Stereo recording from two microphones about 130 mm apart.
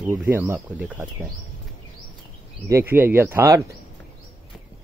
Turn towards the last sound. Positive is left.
turn(degrees=-20)  # may be behind; listen again after turning